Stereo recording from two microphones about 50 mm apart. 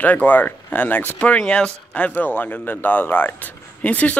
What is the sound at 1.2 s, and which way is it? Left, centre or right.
Speech, left.